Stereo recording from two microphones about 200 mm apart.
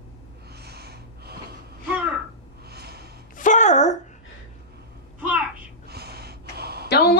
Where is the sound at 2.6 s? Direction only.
55° right (ahead or behind).